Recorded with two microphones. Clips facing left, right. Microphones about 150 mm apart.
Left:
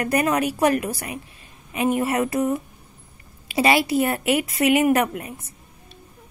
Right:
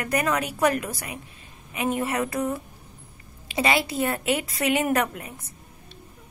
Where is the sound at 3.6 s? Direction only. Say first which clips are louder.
Left 5 dB; 25° left (ahead or behind).